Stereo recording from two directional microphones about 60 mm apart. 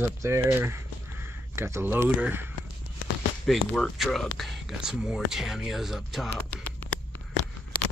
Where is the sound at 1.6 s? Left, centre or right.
Right.